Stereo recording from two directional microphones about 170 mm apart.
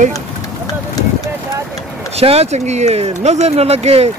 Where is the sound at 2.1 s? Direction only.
35° right (ahead or behind).